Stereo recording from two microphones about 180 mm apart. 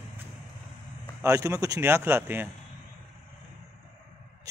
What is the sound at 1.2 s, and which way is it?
Speech, 15° right (ahead or behind).